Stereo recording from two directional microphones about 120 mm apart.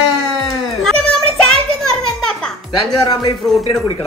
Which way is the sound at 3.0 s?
35° left (ahead or behind).